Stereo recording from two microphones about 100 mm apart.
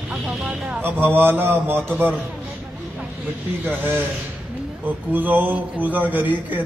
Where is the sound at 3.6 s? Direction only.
20° right (ahead or behind).